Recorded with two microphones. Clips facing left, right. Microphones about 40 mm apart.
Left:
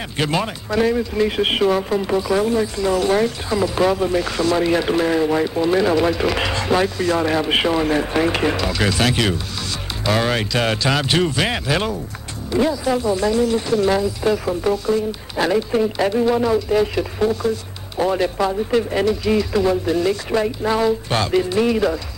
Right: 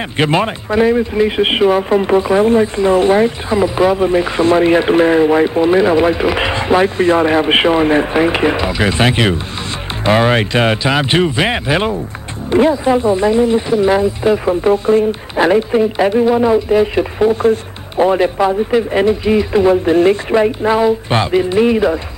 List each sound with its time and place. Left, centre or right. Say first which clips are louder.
0.2 s speech: right 7 dB; right